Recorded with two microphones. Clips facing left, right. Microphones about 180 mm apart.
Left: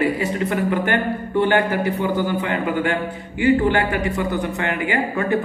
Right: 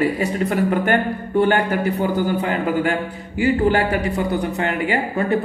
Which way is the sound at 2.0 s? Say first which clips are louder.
Right 1 dB; 40° right (ahead or behind).